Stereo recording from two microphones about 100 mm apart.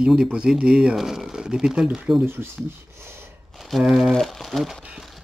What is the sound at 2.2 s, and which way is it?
Speech, 25° right (ahead or behind).